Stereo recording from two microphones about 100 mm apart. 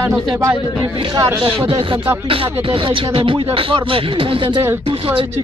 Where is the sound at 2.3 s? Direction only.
60° right (ahead or behind).